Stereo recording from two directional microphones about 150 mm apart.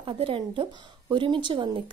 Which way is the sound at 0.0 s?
35° right (ahead or behind).